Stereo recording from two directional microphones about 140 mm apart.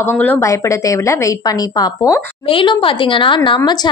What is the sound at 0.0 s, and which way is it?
A woman's voice, 15° left (ahead or behind).